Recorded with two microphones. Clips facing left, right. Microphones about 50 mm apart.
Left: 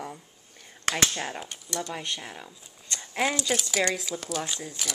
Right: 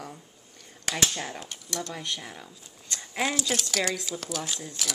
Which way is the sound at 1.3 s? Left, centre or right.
Centre.